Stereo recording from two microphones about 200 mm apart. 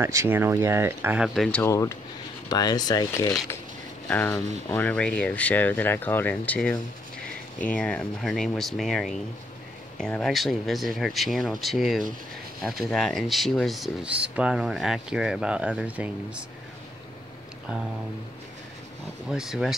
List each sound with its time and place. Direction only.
0.0 s speech: 15° right (ahead or behind)
1.6 s speech: 15° left (ahead or behind); by 16.1 s 5° right (ahead or behind)
19.2 s speech: 5° right (ahead or behind)